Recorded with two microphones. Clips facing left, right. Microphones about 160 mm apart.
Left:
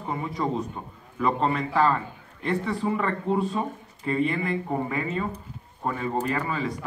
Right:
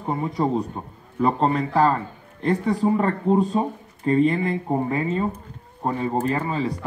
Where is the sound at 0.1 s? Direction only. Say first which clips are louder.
Right 5 dB; 35° right (ahead or behind).